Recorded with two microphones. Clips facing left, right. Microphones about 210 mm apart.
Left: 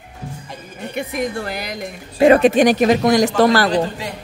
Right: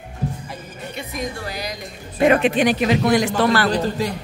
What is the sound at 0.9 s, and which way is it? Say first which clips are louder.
Speech: left 6 dB; 55° left (ahead or behind).